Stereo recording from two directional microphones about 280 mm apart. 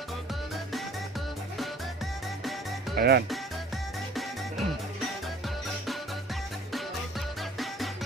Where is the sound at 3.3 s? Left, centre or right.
Centre.